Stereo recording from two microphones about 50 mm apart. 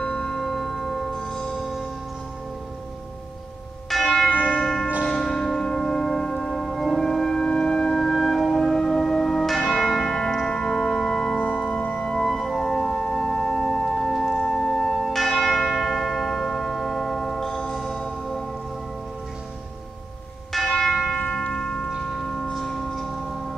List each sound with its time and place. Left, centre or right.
0.0 s tubular bells: centre
3.9 s church bell: centre
11.5 s music: centre
11.8 s music: left
12.3 s music: centre
14.4 s church bell: centre
15.5 s tubular bells: centre
20.5 s church bell: centre
20.9 s church bell: centre
21.5 s tubular bells: centre